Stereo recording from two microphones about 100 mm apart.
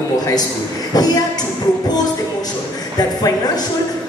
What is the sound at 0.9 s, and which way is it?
Speech, 40° left (ahead or behind).